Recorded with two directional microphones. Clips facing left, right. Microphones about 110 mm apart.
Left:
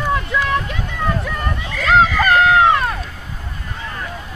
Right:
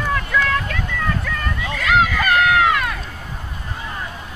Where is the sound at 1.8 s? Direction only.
30° left (ahead or behind).